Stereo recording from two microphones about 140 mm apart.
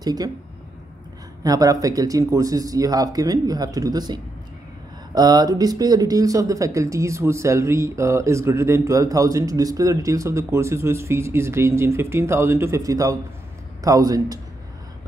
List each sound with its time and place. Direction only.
0.0 s speech: 30° right (ahead or behind)
1.4 s speech: 25° right (ahead or behind)